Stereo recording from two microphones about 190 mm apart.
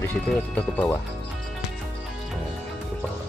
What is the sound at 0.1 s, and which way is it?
Speech, 10° left (ahead or behind).